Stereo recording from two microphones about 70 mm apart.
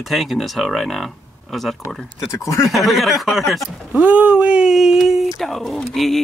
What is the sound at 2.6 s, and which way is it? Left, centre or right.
Speech, centre.